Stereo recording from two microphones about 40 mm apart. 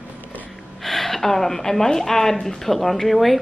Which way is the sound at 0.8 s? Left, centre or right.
Centre.